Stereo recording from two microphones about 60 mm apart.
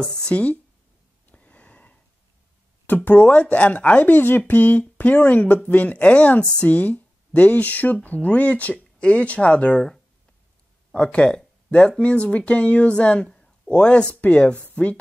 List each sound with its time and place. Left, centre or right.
0.0 s speech: centre
1.3 s sniff: left
3.1 s speech: left
10.9 s speech: centre